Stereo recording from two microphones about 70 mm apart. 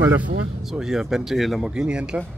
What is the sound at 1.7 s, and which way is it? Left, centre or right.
Speech, centre.